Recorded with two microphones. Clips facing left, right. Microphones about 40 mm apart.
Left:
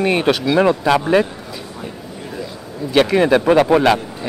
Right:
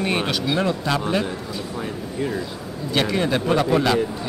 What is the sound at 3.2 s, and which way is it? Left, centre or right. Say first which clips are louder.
Speech: left 7 dB; left.